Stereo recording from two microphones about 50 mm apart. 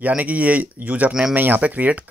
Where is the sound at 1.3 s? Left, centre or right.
Right.